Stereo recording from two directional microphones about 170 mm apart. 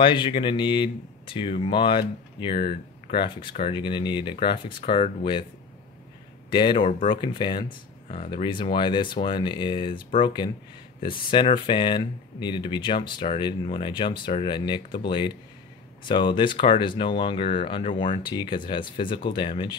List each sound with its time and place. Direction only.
0.0 s speech: 30° left (ahead or behind)
6.5 s speech: 30° left (ahead or behind)